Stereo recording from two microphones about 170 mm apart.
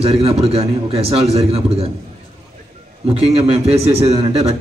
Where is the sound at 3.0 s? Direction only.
35° right (ahead or behind).